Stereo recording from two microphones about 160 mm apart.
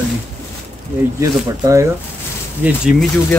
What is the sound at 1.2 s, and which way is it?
Speech, 20° right (ahead or behind).